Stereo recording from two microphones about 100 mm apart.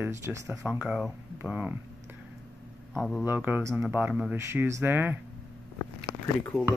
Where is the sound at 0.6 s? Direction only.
10° right (ahead or behind).